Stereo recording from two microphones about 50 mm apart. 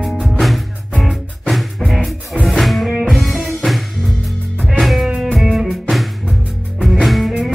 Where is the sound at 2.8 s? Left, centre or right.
Centre.